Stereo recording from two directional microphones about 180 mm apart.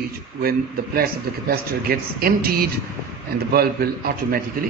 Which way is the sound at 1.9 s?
55° right (ahead or behind).